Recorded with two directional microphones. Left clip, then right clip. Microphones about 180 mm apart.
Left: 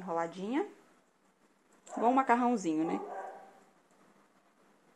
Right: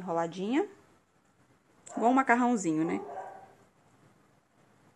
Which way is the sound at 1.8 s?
30° right (ahead or behind).